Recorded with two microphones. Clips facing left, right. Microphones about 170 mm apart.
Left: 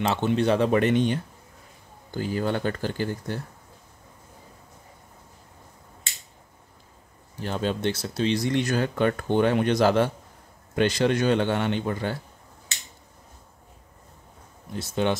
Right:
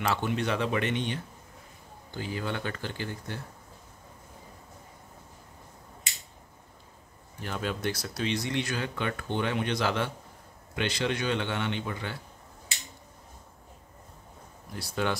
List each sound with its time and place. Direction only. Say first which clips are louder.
0.0 s speech: left 6 dB; 25° left (ahead or behind); by 3.3 s 40° left (ahead or behind)
7.3 s a man's voice: left 6 dB; 30° left (ahead or behind)
14.7 s speech: left 5 dB; 20° left (ahead or behind)